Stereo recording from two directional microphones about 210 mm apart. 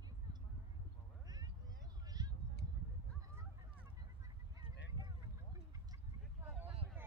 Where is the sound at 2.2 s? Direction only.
15° right (ahead or behind).